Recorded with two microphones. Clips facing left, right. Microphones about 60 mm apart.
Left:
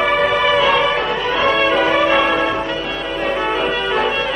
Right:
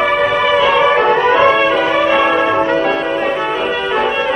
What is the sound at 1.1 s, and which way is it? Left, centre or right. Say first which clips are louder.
Music: right 8 dB; right.